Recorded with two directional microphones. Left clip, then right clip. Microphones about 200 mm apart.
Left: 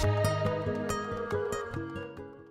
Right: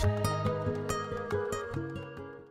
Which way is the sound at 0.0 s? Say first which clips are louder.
Left 3 dB; centre (ahead or behind).